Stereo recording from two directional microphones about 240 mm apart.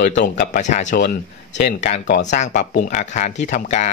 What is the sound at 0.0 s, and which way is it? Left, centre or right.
Speech, left.